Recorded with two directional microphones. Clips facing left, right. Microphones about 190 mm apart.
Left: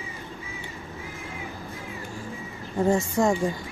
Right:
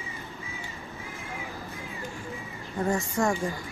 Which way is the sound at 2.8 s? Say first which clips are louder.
Left 5 dB; 25° left (ahead or behind).